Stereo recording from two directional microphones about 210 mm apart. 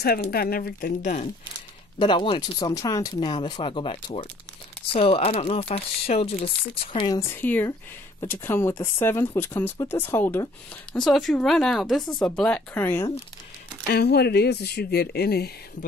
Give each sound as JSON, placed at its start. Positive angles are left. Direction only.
{"t": 0.0, "sound": "speech", "side_deg": 45}
{"t": 2.0, "sound": "speech", "side_deg": 25}
{"t": 13.8, "sound": "speech", "side_deg": 50}